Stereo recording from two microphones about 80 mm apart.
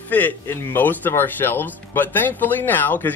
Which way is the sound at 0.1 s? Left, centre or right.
Left.